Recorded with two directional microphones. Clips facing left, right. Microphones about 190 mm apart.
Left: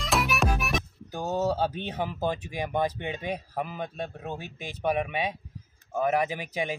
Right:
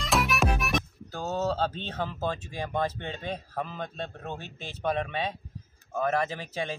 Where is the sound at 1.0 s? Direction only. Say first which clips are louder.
Left 4 dB; 15° left (ahead or behind).